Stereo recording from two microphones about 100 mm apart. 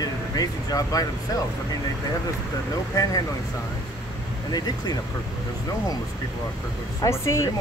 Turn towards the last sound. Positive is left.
turn(degrees=30)  # may be behind; listen again after turning